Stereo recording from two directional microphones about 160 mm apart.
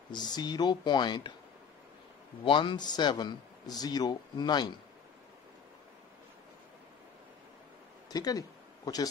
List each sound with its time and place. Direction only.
0.1 s speech: 25° left (ahead or behind)
2.4 s speech: 30° left (ahead or behind)
8.1 s a sound: 25° left (ahead or behind)